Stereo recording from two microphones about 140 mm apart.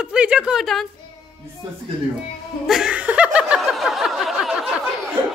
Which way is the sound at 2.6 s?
5° right (ahead or behind).